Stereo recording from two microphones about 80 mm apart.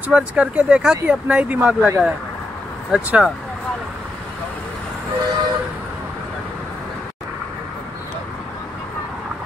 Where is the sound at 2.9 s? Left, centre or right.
Centre.